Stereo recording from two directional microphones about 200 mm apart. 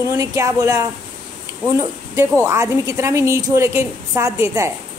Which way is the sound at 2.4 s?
15° right (ahead or behind).